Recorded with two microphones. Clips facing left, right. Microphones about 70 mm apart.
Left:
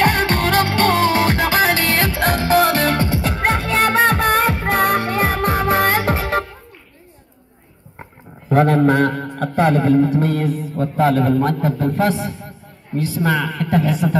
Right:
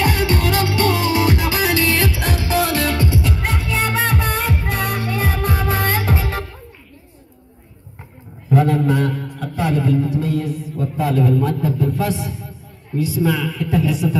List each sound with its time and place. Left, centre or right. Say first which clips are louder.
0.0 s music: left 2 dB; left
8.0 s a sound: left 3 dB; left
11.1 s a man's voice: left 1 dB; left
13.2 s a man's voice: left 2 dB; left